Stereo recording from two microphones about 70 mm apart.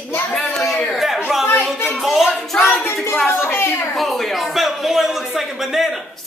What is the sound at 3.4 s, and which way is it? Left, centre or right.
Speech, left.